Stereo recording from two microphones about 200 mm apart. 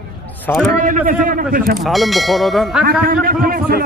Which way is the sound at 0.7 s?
40° right (ahead or behind).